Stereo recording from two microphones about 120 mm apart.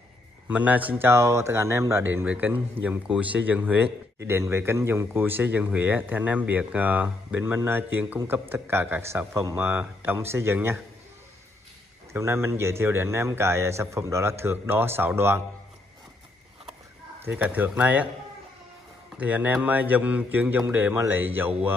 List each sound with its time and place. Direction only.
0.5 s speech: 15° right (ahead or behind)
12.1 s a man's voice: 20° right (ahead or behind)
17.2 s speech: 10° right (ahead or behind)
19.1 s speech: 15° right (ahead or behind)